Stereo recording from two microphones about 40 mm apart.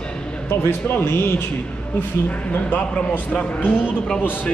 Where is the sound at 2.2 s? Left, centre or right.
Left.